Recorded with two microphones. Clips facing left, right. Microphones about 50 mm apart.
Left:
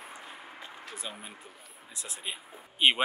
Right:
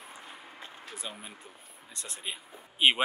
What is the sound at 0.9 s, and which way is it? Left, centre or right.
Speech, centre.